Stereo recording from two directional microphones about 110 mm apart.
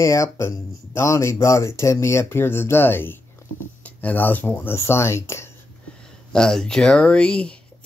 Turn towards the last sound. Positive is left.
turn(degrees=10)  # may be behind; listen again after turning